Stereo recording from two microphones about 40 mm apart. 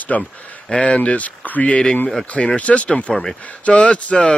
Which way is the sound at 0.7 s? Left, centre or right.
Left.